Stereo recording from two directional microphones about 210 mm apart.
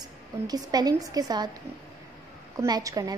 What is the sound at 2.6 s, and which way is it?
Speech, 15° right (ahead or behind).